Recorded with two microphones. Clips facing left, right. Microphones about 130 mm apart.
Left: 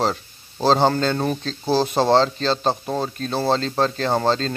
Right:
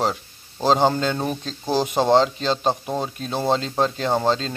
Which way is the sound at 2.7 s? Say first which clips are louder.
Left 1 dB; 5° right (ahead or behind).